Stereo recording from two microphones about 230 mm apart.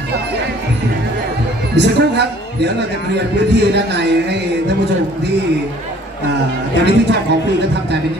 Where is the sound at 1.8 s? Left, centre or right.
Right.